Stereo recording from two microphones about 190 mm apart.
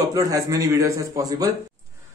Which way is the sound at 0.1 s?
20° right (ahead or behind).